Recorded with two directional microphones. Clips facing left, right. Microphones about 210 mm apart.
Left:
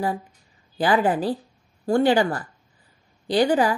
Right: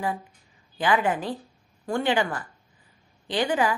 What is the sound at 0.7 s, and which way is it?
Speech, 35° left (ahead or behind).